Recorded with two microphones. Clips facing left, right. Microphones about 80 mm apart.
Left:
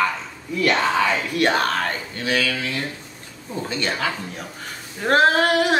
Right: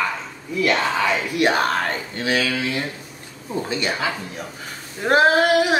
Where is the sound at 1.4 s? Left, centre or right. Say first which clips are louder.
Right 1 dB; centre.